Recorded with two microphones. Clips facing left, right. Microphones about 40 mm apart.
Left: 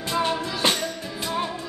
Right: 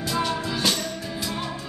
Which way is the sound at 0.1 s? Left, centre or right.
Left.